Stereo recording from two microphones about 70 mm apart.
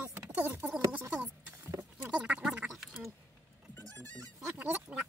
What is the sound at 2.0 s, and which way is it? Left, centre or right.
Duck, centre.